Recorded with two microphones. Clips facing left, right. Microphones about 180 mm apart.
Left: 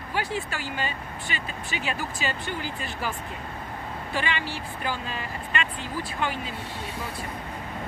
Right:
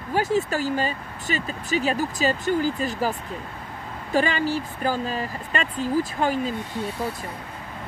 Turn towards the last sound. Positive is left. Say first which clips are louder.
# right 7 dB
turn(degrees=-40)  # may be behind; listen again after turning